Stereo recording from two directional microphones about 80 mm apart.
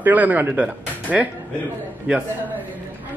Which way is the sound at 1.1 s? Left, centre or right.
Centre.